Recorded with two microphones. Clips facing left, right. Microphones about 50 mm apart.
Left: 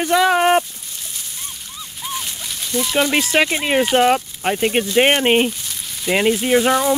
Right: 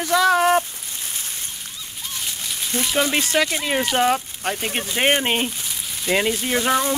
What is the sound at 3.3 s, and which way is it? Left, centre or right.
Speech, left.